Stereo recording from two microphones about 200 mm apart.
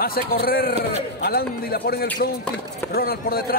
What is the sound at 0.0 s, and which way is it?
A man's voice, 50° left (ahead or behind).